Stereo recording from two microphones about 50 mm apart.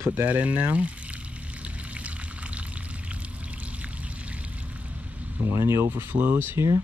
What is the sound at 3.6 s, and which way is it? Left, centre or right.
Pour, right.